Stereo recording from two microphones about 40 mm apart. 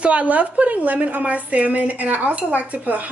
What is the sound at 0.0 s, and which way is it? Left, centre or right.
A woman's voice, right.